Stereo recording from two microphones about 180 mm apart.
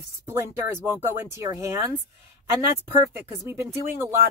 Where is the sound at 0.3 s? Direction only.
15° right (ahead or behind).